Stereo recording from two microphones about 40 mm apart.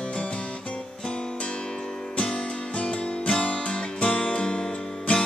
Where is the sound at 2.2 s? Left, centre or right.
Left.